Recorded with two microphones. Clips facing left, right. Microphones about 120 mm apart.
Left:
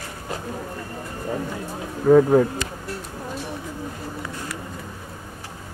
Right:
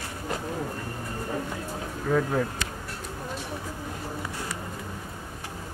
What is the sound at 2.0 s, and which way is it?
Speech, 40° left (ahead or behind).